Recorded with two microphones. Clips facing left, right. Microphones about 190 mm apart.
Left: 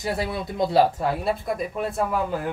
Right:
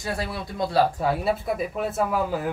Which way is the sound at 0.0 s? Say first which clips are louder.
Left 3 dB; 20° left (ahead or behind).